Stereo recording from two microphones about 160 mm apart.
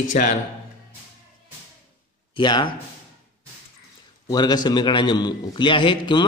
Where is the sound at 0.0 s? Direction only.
55° left (ahead or behind).